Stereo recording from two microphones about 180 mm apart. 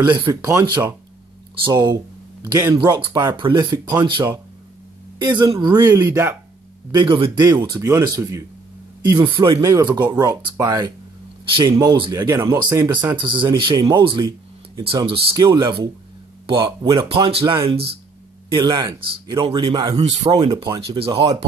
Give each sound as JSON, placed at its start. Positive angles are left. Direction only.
{"t": 0.1, "sound": "speech", "side_deg": -20}
{"t": 6.9, "sound": "speech", "side_deg": -25}